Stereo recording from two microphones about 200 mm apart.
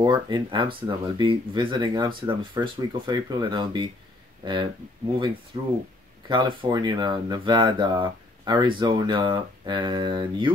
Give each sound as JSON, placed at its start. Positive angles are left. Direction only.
{"t": 0.0, "sound": "speech", "side_deg": -25}
{"t": 5.5, "sound": "speech", "side_deg": -20}